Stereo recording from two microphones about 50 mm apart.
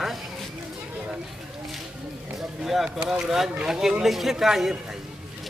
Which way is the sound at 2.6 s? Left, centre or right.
Centre.